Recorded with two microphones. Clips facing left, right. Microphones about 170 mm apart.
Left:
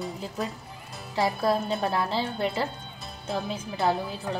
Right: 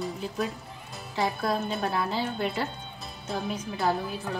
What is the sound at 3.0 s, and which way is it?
Music, centre (ahead or behind).